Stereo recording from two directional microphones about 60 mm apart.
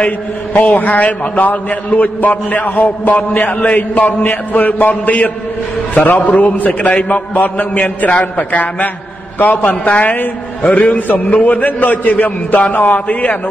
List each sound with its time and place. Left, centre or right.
0.0 s a man's voice: left